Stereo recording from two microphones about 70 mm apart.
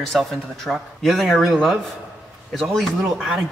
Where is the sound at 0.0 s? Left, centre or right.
Centre.